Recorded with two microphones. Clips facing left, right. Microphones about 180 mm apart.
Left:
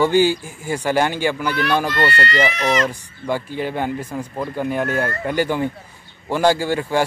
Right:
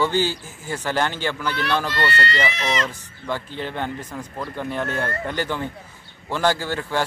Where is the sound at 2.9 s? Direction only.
10° left (ahead or behind).